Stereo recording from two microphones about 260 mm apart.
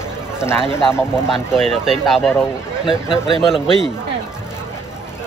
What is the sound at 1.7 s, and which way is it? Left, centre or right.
Speech, centre.